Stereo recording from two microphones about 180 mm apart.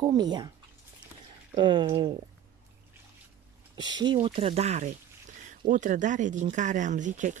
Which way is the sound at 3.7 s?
25° right (ahead or behind).